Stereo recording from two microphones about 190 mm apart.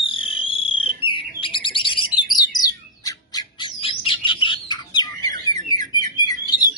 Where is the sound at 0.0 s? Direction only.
30° left (ahead or behind).